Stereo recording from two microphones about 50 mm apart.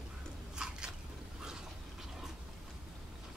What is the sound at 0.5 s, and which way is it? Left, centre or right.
Biting, centre.